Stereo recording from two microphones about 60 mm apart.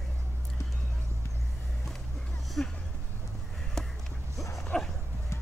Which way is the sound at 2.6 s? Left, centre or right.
Centre.